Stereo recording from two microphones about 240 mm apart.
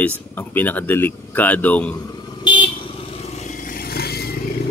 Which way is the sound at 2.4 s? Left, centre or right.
Centre.